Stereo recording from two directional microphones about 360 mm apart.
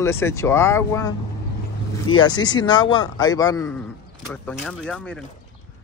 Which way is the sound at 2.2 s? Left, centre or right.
Centre.